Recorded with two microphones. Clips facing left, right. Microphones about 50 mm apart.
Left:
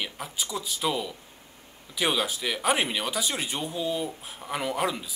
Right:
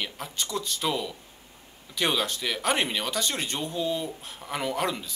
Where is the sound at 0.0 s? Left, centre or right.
Centre.